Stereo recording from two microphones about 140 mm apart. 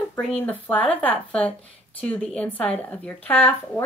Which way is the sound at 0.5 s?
10° left (ahead or behind).